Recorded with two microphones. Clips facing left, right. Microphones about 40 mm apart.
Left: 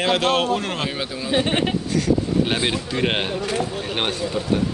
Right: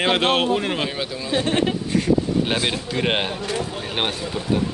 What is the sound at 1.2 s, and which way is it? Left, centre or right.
Speech, left.